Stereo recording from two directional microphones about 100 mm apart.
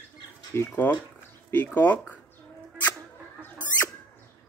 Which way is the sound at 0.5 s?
20° left (ahead or behind).